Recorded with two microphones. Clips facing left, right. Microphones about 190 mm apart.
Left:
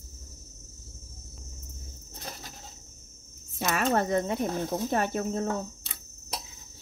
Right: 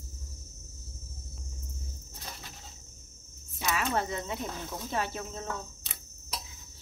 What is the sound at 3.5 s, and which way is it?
Speech, 50° left (ahead or behind).